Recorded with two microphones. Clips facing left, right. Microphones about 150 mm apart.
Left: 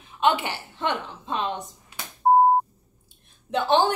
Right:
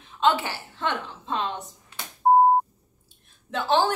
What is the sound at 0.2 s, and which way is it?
Speech, 15° left (ahead or behind).